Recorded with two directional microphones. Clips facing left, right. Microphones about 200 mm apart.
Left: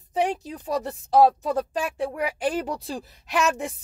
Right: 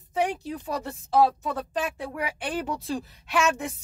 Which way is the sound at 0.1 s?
35° left (ahead or behind).